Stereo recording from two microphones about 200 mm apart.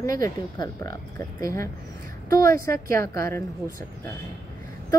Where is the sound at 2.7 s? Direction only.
15° left (ahead or behind).